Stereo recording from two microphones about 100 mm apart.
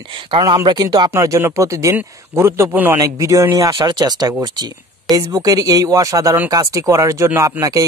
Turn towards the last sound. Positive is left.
turn(degrees=-35)  # may be behind; listen again after turning